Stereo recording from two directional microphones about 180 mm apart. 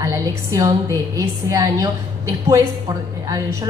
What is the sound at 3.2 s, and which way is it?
Speech, 20° right (ahead or behind).